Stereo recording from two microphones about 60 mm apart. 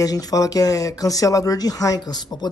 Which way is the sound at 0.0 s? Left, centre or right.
Left.